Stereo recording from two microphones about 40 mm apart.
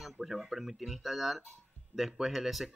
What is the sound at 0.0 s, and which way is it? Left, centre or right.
Speech, centre.